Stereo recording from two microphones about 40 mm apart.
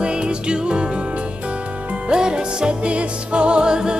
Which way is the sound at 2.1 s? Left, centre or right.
Centre.